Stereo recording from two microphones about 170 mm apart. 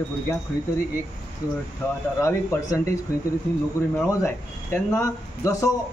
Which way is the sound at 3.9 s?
15° left (ahead or behind).